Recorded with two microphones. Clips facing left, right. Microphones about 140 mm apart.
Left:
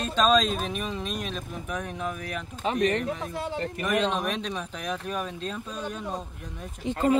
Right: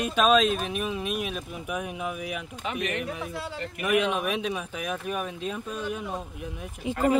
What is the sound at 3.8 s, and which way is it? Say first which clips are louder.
Speech: right 2 dB; 10° right (ahead or behind).